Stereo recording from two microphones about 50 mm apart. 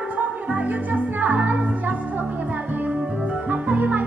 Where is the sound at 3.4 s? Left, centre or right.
Right.